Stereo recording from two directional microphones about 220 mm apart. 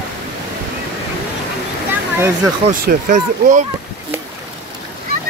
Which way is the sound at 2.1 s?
10° right (ahead or behind).